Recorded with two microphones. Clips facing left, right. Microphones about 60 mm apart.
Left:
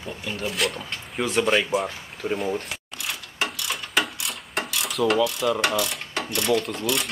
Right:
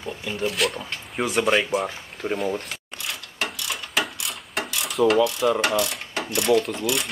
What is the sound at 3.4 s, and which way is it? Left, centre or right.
Pulleys, centre.